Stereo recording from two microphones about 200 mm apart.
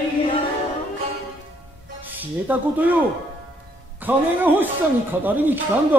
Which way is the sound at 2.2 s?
10° right (ahead or behind).